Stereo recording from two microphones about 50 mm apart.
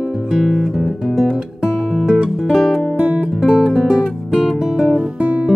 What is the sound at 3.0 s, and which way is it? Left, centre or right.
Guitar, right.